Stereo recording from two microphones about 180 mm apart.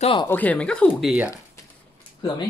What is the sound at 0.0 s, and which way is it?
Speech, 30° left (ahead or behind).